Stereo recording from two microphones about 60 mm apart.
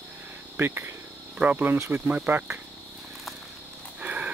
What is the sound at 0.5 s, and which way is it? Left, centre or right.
Speech, right.